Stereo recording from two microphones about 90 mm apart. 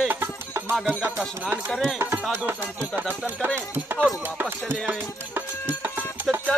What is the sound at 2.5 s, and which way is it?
Speech, 20° right (ahead or behind).